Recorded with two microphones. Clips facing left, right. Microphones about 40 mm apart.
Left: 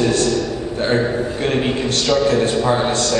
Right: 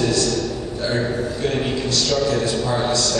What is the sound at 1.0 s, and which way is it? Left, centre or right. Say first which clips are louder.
Speech: left 3 dB; centre.